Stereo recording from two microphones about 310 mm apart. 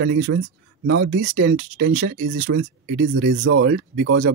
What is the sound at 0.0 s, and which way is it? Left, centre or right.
Speech, right.